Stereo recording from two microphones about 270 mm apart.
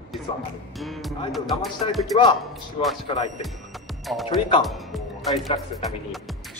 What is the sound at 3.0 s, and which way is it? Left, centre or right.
Speech, left.